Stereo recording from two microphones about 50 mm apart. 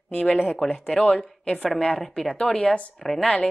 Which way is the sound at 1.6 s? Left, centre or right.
Centre.